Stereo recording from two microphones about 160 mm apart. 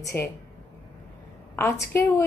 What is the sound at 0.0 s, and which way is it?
Speech, 15° left (ahead or behind).